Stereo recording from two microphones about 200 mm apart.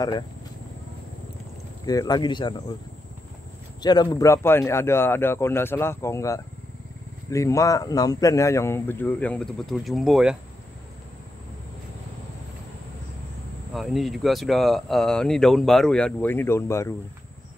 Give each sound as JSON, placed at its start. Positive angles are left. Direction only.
{"t": 1.9, "sound": "speech", "side_deg": 20}
{"t": 3.8, "sound": "speech", "side_deg": 20}
{"t": 13.7, "sound": "speech", "side_deg": 0}